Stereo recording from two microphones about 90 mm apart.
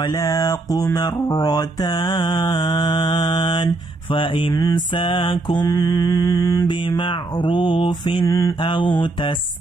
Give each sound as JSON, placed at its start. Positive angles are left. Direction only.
{"t": 0.0, "sound": "mantra", "side_deg": 45}
{"t": 4.6, "sound": "mantra", "side_deg": 50}
{"t": 4.9, "sound": "mantra", "side_deg": 70}
{"t": 5.6, "sound": "mantra", "side_deg": 45}
{"t": 7.0, "sound": "mantra", "side_deg": 60}
{"t": 8.3, "sound": "mantra", "side_deg": 30}
{"t": 8.5, "sound": "mantra", "side_deg": 60}